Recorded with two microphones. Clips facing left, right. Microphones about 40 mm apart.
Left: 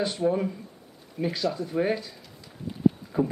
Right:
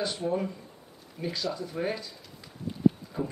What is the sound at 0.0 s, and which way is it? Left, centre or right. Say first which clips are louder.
Speech: left 4 dB; centre.